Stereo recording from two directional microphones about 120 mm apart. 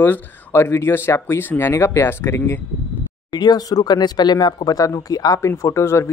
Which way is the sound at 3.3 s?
35° left (ahead or behind).